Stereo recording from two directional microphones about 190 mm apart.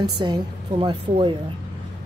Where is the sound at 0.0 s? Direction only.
20° right (ahead or behind).